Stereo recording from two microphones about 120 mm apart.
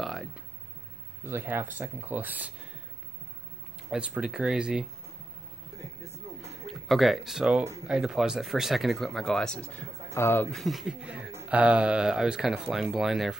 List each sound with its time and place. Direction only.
0.0 s a sound: centre (ahead or behind)
1.2 s speech: 20° right (ahead or behind)
3.9 s speech: 10° right (ahead or behind)
6.6 s speech: centre (ahead or behind)
10.1 s speech: 25° left (ahead or behind)
10.5 s speech: centre (ahead or behind)